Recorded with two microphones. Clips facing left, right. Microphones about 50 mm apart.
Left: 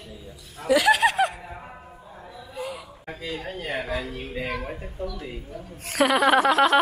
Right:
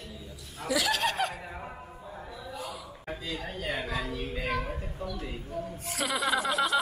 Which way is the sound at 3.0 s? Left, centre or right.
Left.